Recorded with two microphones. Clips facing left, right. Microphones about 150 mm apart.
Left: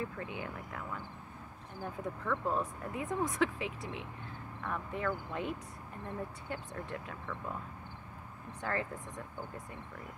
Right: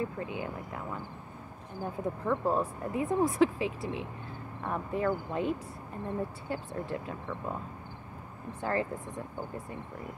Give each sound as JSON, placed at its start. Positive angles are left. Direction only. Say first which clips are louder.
{"t": 0.2, "sound": "speech", "louder": "right 5 dB", "side_deg": -25}
{"t": 8.5, "sound": "speech", "louder": "right 5 dB", "side_deg": -30}